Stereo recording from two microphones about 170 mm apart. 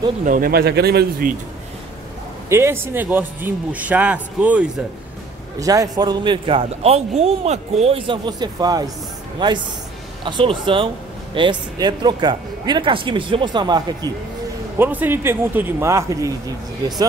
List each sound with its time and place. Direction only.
0.2 s speech: 55° right (ahead or behind)
2.5 s speech: 15° right (ahead or behind)
5.6 s a man's voice: 20° right (ahead or behind)
14.8 s speech: 10° right (ahead or behind)